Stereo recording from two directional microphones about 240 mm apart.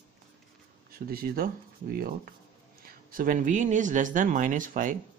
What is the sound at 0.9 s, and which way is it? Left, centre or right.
Speech, right.